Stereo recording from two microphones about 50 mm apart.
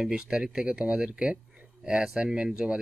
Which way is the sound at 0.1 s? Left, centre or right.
Centre.